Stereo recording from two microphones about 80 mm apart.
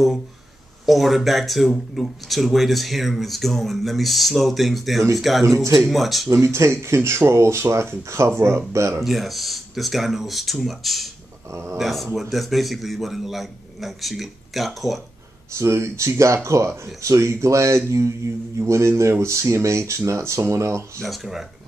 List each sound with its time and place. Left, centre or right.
0.8 s speech: centre
6.3 s speech: right
9.0 s speech: centre
11.5 s speech: right
11.8 s speech: centre
15.5 s speech: right
21.0 s speech: centre